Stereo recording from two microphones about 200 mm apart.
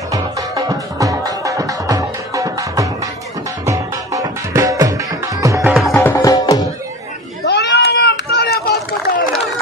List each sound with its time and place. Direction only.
0.1 s music: 15° right (ahead or behind)
5.7 s music: centre (ahead or behind)
5.9 s music: 10° left (ahead or behind)
7.4 s run: 55° left (ahead or behind)